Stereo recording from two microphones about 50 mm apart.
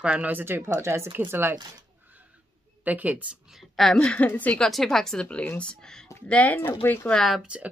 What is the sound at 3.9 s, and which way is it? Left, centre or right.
Speech, centre.